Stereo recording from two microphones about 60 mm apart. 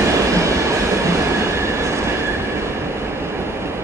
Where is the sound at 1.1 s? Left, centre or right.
Right.